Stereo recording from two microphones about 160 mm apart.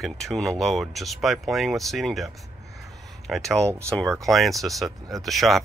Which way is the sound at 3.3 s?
Centre (ahead or behind).